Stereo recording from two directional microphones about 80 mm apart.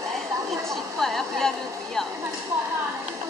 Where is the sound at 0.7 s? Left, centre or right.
Centre.